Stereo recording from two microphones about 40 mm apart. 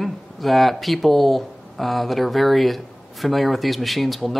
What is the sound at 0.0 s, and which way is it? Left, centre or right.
Speech, centre.